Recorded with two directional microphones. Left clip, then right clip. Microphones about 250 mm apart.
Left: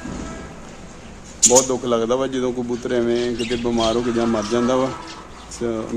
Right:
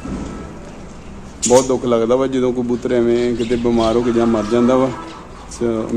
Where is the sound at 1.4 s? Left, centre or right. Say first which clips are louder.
Right 3 dB; centre.